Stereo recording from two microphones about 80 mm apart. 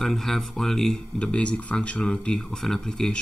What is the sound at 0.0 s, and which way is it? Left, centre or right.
Speech, centre.